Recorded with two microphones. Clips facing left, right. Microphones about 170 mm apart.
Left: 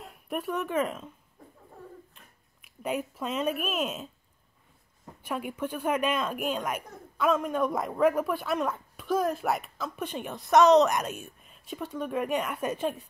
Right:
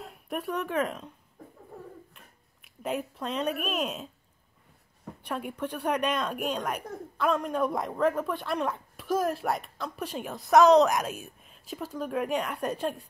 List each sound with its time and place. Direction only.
0.0 s speech: centre (ahead or behind)
2.6 s a woman's voice: centre (ahead or behind)
5.2 s a woman's voice: centre (ahead or behind)